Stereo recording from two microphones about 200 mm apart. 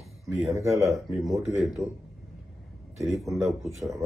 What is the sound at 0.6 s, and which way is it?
Speech, 15° right (ahead or behind).